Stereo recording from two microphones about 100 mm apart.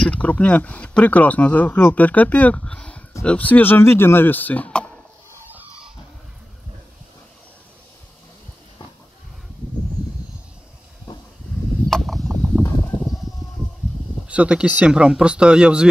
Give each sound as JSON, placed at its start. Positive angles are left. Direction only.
{"t": 0.0, "sound": "speech", "side_deg": 15}
{"t": 11.9, "sound": "a sound", "side_deg": 0}
{"t": 14.2, "sound": "speech", "side_deg": -10}